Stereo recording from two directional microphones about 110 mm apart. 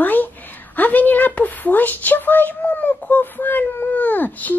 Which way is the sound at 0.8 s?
15° left (ahead or behind).